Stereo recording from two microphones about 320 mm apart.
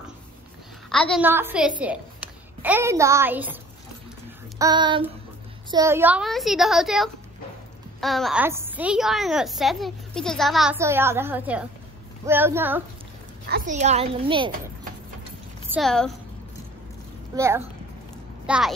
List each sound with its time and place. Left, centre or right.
0.8 s a woman's voice: centre
4.6 s child singing: centre
5.7 s a woman's voice: centre
12.3 s child singing: centre
13.5 s speech: right
15.7 s a woman's voice: centre
17.4 s child singing: centre
18.5 s a woman's voice: centre